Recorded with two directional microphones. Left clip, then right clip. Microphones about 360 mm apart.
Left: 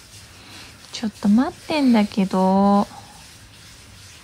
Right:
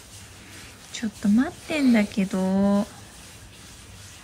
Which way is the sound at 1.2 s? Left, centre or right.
Right.